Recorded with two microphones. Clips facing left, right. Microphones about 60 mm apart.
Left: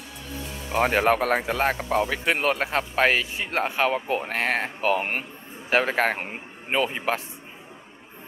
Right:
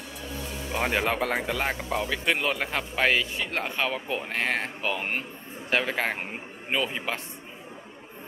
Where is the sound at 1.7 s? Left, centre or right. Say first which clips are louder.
Left 5 dB; centre.